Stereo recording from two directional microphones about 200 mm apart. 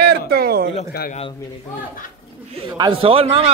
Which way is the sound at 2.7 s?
25° right (ahead or behind).